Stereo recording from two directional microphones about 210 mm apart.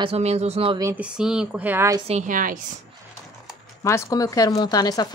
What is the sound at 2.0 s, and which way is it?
Speech, 35° right (ahead or behind).